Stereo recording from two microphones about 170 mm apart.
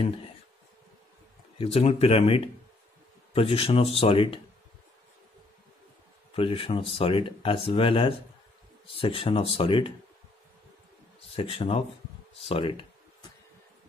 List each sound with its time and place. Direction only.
1.6 s speech: 35° left (ahead or behind)
6.3 s speech: 35° left (ahead or behind)
11.3 s speech: 35° left (ahead or behind)